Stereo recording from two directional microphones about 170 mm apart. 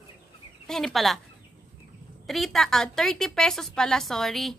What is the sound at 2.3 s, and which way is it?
A woman's voice, centre (ahead or behind).